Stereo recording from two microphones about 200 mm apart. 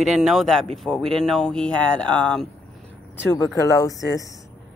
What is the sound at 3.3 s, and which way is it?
Speech, 15° left (ahead or behind).